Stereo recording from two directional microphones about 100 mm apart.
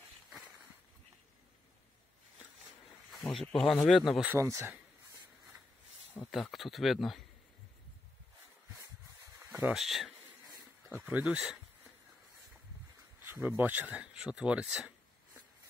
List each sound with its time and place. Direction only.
3.3 s speech: 5° left (ahead or behind)
4.4 s speech: 30° right (ahead or behind)
6.3 s speech: centre (ahead or behind)
9.5 s a sound: 15° right (ahead or behind)
9.8 s speech: centre (ahead or behind)
11.0 s speech: 15° right (ahead or behind)
13.2 s speech: 20° right (ahead or behind)